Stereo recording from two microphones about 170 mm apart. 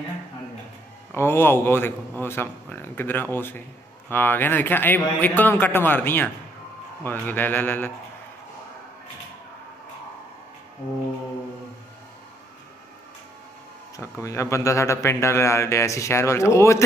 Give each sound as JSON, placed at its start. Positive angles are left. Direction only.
{"t": 1.1, "sound": "speech", "side_deg": 15}
{"t": 13.9, "sound": "speech", "side_deg": 15}